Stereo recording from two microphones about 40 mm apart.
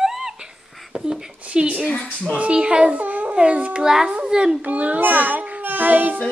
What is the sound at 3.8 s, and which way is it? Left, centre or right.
Speech, centre.